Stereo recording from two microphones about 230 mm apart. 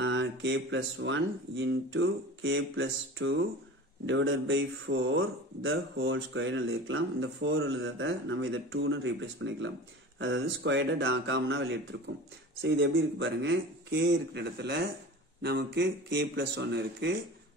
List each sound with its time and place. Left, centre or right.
0.0 s speech: right